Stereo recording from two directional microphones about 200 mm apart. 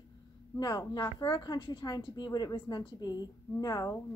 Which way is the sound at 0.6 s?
20° left (ahead or behind).